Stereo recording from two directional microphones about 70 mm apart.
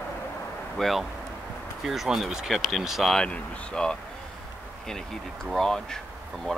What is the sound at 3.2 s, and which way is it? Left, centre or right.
Speech, centre.